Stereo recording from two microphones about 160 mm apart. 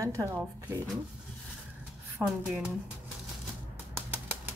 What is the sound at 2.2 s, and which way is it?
Speech, 5° right (ahead or behind).